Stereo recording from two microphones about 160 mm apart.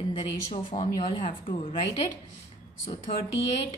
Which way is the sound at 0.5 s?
45° left (ahead or behind).